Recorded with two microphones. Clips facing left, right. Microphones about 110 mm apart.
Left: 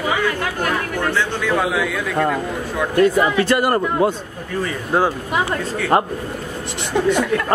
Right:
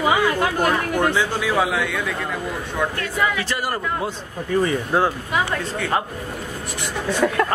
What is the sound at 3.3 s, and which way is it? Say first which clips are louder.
Speech: left 9 dB; 60° left (ahead or behind).